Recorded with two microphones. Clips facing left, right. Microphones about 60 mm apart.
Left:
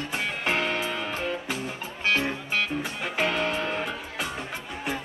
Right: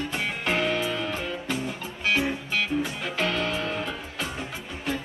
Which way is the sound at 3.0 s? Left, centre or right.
Centre.